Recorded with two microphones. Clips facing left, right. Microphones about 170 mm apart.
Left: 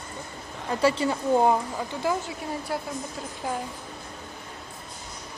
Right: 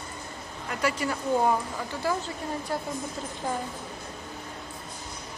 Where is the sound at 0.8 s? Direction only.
25° left (ahead or behind).